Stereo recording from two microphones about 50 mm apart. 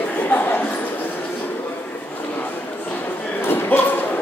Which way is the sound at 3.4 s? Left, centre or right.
Left.